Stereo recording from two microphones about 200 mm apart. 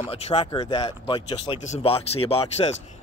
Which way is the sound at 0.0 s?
30° left (ahead or behind).